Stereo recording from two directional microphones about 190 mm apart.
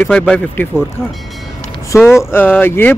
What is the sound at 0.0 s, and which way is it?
Speech, 5° left (ahead or behind).